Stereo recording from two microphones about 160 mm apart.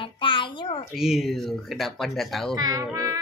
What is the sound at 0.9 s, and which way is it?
Speech, 5° right (ahead or behind).